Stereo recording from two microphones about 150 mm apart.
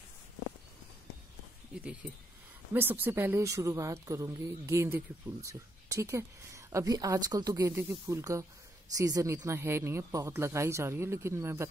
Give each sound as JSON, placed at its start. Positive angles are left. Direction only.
{"t": 2.7, "sound": "a woman's voice", "side_deg": -15}